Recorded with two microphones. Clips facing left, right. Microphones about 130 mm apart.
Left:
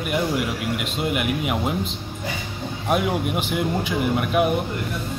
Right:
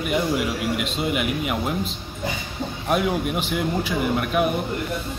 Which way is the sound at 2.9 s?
5° left (ahead or behind).